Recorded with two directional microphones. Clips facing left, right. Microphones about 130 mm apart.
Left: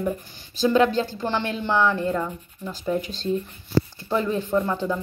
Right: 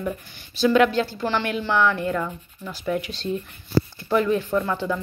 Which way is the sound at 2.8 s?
35° left (ahead or behind).